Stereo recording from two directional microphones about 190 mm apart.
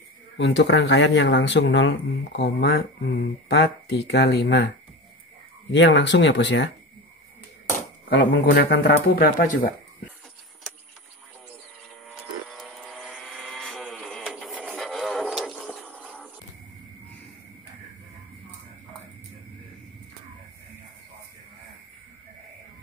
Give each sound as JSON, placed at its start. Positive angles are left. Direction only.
{"t": 0.4, "sound": "speech", "side_deg": 65}
{"t": 5.7, "sound": "speech", "side_deg": 70}
{"t": 8.1, "sound": "speech", "side_deg": 65}
{"t": 12.4, "sound": "vehicle", "side_deg": 0}